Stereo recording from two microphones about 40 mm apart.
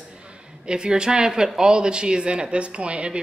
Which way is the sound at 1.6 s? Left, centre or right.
Right.